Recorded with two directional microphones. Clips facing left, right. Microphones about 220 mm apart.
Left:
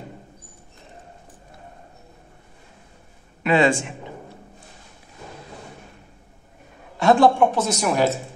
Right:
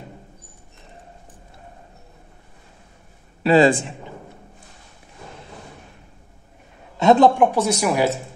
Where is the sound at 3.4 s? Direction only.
35° right (ahead or behind).